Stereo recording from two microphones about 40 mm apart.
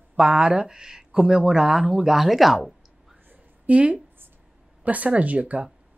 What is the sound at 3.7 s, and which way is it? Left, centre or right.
Speech, right.